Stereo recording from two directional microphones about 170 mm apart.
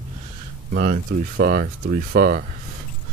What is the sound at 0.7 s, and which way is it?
Speech, 60° right (ahead or behind).